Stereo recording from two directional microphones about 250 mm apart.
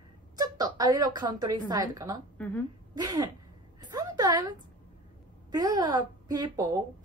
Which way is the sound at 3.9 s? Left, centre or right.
Centre.